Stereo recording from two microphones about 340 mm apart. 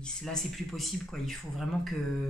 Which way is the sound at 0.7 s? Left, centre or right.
Centre.